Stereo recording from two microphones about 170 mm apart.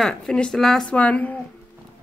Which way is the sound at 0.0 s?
5° left (ahead or behind).